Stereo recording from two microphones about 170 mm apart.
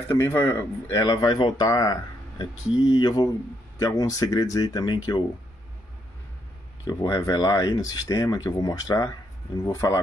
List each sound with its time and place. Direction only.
0.1 s speech: 15° left (ahead or behind)
6.8 s speech: 20° left (ahead or behind)